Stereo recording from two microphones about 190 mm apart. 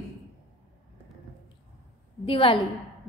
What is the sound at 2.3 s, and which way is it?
Speech, 30° left (ahead or behind).